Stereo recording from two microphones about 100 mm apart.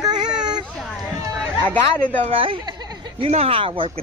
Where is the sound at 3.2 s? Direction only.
85° right; by 3.9 s 60° right (ahead or behind).